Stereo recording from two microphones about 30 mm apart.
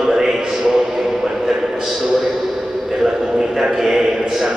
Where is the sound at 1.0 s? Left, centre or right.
Centre.